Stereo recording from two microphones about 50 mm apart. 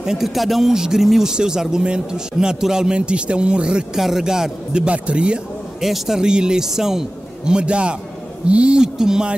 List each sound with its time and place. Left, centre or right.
0.0 s speech: centre
3.9 s speech: centre
4.8 s speech: right
5.8 s speech: centre